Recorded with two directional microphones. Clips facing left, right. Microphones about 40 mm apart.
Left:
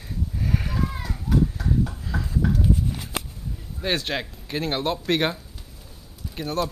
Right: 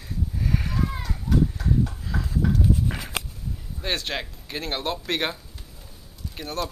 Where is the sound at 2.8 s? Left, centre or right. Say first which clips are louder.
Right 1 dB; right.